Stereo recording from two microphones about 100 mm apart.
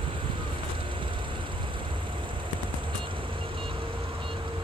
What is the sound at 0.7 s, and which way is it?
Vehicle, 55° right (ahead or behind).